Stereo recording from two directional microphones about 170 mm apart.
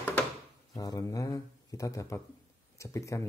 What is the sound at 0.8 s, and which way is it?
Speech, 20° left (ahead or behind).